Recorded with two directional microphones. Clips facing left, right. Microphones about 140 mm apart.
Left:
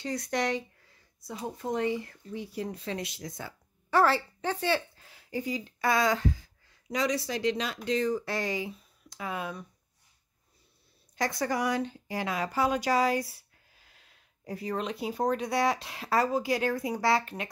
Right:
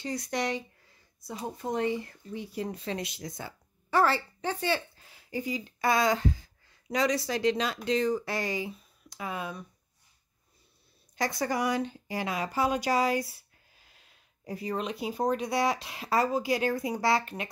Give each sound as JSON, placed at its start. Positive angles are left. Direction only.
{"t": 0.0, "sound": "speech", "side_deg": -5}
{"t": 1.2, "sound": "speech", "side_deg": -15}
{"t": 3.9, "sound": "speech", "side_deg": 0}
{"t": 5.9, "sound": "speech", "side_deg": -20}
{"t": 6.9, "sound": "speech", "side_deg": -35}
{"t": 8.0, "sound": "speech", "side_deg": -20}
{"t": 8.4, "sound": "speech", "side_deg": -5}
{"t": 11.1, "sound": "speech", "side_deg": -10}
{"t": 14.4, "sound": "speech", "side_deg": -10}